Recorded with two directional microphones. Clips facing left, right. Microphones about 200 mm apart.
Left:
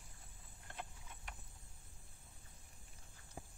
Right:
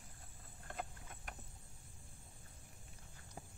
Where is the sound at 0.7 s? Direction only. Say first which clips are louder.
Right 4 dB; 50° right (ahead or behind).